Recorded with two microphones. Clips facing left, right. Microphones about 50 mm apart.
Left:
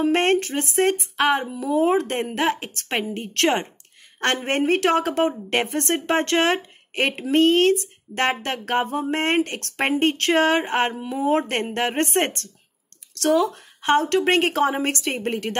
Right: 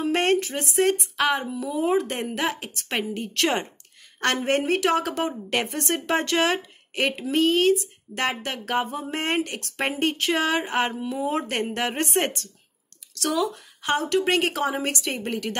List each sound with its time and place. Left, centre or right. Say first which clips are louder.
0.0 s a woman's voice: left 3 dB; left
1.7 s a woman's voice: left 4 dB; left
4.5 s a woman's voice: left 3 dB; left
7.2 s a woman's voice: left 3 dB; left
10.9 s speech: left 1 dB; left
11.2 s a woman's voice: left 6 dB; left